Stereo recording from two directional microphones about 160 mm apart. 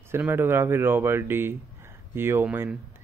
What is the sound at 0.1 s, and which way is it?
Speech, 15° right (ahead or behind).